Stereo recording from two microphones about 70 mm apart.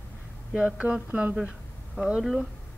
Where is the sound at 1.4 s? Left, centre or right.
Centre.